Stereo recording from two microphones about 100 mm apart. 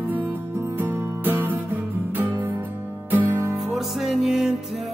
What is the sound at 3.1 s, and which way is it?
Music, 20° right (ahead or behind).